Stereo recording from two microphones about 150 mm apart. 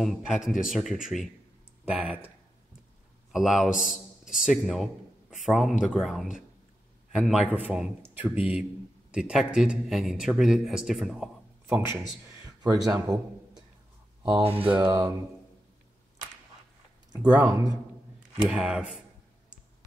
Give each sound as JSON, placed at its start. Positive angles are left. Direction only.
{"t": 0.0, "sound": "a man's voice", "side_deg": -5}
{"t": 11.6, "sound": "a man's voice", "side_deg": -15}
{"t": 12.4, "sound": "a sound", "side_deg": -25}
{"t": 14.2, "sound": "speech", "side_deg": -35}
{"t": 14.8, "sound": "music", "side_deg": -25}
{"t": 18.4, "sound": "speech", "side_deg": -5}